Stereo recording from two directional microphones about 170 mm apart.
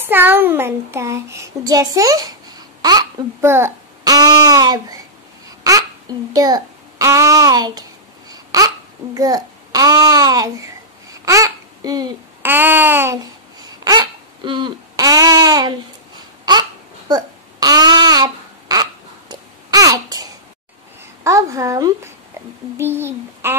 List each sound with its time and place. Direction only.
0.0 s a child's voice: 10° right (ahead or behind)
8.3 s babbling: 20° right (ahead or behind)
12.4 s babbling: 10° right (ahead or behind)
13.8 s babbling: 25° right (ahead or behind)
17.1 s babbling: 25° right (ahead or behind)